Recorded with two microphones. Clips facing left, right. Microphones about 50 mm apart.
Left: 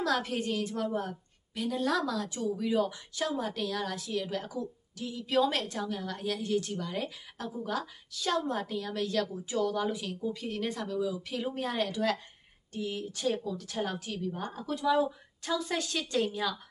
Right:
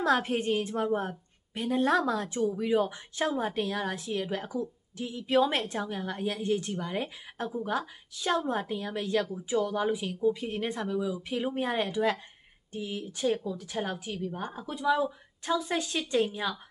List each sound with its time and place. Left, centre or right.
0.0 s a woman's voice: right